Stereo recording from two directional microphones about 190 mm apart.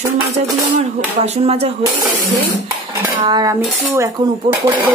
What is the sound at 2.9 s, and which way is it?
Cutlery, 20° right (ahead or behind).